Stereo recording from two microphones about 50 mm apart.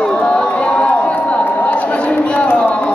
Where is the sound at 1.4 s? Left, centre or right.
Left.